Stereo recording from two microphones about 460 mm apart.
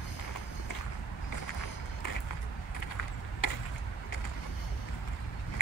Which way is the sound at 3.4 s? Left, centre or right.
Left.